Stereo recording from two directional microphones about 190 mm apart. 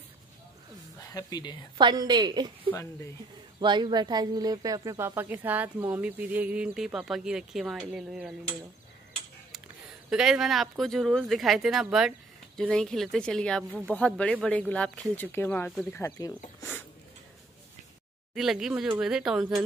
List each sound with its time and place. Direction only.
1.1 s speech: 20° left (ahead or behind)
1.8 s a woman's voice: 25° right (ahead or behind)
2.7 s speech: 15° left (ahead or behind)
3.5 s speech: 25° right (ahead or behind); by 8.4 s 5° right (ahead or behind)
10.0 s speech: 5° right (ahead or behind); by 16.3 s 15° left (ahead or behind)
18.3 s speech: centre (ahead or behind)